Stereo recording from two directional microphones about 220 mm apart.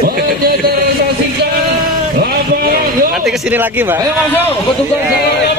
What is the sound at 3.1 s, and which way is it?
A man's voice, centre (ahead or behind).